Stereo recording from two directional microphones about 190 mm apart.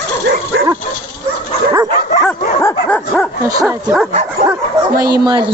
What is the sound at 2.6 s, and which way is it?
Dog, 5° left (ahead or behind).